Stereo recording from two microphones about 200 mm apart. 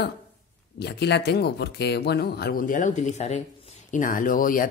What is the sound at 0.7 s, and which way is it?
Speech, 55° left (ahead or behind).